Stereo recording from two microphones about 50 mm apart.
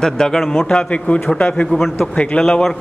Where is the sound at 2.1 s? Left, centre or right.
Left.